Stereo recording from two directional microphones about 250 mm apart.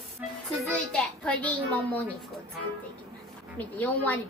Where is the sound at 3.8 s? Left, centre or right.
Centre.